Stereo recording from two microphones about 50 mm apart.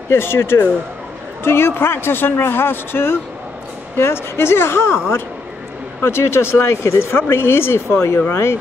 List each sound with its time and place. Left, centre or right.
0.1 s a man's voice: left
6.0 s speech: left